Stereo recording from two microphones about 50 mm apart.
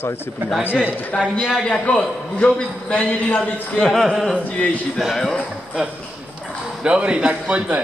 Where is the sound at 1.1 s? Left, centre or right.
Left.